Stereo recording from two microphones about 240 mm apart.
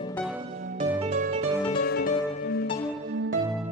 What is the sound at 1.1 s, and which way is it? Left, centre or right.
Music, right.